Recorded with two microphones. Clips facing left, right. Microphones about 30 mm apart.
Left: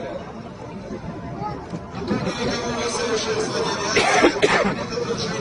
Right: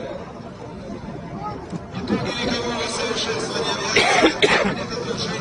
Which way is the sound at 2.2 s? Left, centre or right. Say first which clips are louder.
Right 1 dB; right.